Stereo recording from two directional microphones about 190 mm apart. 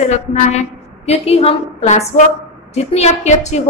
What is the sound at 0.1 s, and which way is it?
A woman's voice, 35° left (ahead or behind).